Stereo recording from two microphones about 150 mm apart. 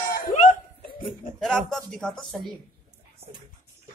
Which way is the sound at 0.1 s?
60° left (ahead or behind).